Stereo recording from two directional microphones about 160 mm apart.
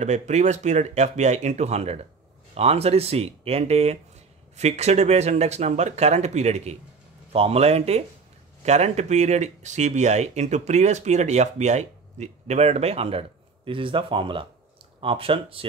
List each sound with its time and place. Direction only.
0.0 s speech: 45° right (ahead or behind)